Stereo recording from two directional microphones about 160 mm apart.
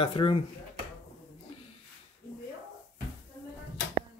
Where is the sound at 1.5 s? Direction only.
35° left (ahead or behind).